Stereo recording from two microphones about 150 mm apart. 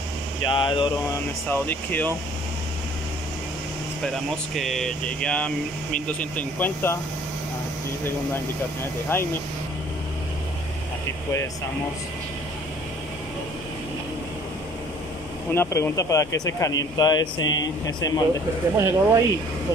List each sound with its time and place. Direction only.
0.4 s speech: 30° left (ahead or behind)
1.5 s speech: 10° left (ahead or behind)
4.1 s speech: centre (ahead or behind)
15.5 s speech: 15° left (ahead or behind)
18.8 s speech: 20° right (ahead or behind)